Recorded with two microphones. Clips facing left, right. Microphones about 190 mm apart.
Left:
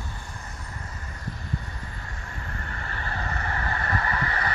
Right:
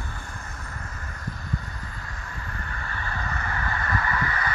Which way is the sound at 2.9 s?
35° left (ahead or behind).